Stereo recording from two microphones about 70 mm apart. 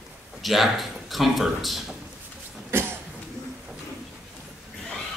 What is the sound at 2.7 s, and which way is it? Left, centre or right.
Cough, right.